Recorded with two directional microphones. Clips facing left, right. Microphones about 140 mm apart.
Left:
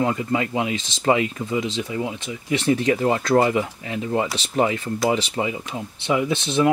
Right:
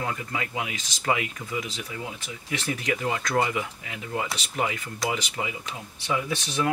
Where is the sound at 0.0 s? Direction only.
25° left (ahead or behind).